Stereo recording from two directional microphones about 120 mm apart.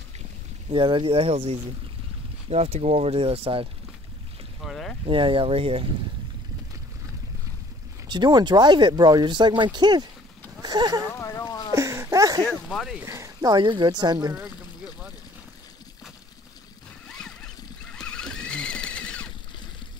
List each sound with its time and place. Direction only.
0.7 s speech: 40° right (ahead or behind)
4.6 s speech: centre (ahead or behind)
5.0 s speech: 45° right (ahead or behind)
8.1 s speech: 35° right (ahead or behind)
11.1 s a sound: 25° left (ahead or behind)
11.7 s a sound: 25° right (ahead or behind)
12.7 s speech: centre (ahead or behind)
13.0 s speech: 25° right (ahead or behind)
17.1 s boat: 5° left (ahead or behind)